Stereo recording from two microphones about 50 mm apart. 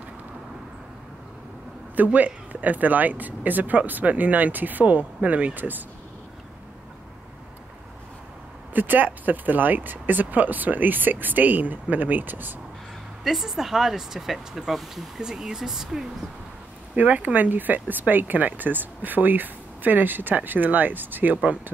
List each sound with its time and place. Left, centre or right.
2.1 s speech: right
8.7 s speech: right
13.2 s speech: centre
16.9 s speech: right